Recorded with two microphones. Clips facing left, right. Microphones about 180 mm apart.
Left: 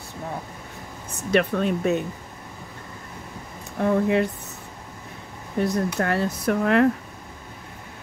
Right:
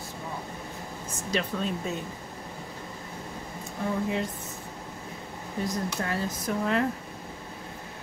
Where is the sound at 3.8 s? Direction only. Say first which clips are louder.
Left 8 dB; 65° left (ahead or behind).